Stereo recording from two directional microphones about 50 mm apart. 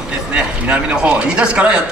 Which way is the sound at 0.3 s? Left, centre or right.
Right.